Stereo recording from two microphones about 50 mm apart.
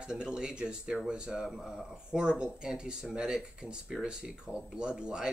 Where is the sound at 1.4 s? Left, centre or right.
Centre.